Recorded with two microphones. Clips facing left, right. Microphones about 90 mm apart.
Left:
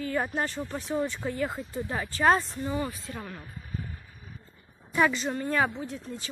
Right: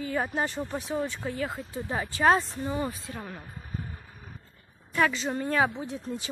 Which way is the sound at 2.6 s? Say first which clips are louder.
Even; 15° right (ahead or behind).